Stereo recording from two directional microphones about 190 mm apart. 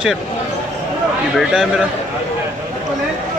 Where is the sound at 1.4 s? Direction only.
5° right (ahead or behind).